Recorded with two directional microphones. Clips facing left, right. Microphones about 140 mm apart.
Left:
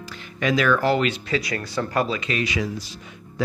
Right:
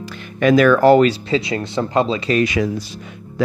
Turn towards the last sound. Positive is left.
turn(degrees=-60)  # may be behind; listen again after turning